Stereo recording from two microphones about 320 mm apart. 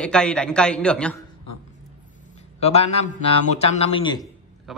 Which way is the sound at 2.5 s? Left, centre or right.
Centre.